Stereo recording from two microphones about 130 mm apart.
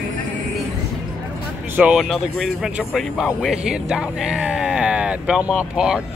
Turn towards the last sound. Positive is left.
turn(degrees=-5)  # may be behind; listen again after turning